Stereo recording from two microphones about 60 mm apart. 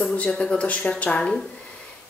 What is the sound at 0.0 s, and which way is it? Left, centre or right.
A woman's voice, centre.